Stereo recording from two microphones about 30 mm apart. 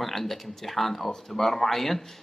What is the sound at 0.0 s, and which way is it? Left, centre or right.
Speech, centre.